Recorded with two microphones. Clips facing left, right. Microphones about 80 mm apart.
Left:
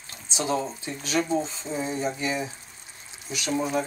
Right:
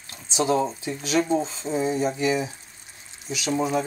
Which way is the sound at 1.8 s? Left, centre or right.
Centre.